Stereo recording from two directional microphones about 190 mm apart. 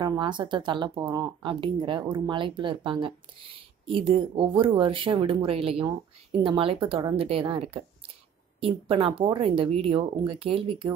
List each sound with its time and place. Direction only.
0.0 s speech: 25° right (ahead or behind)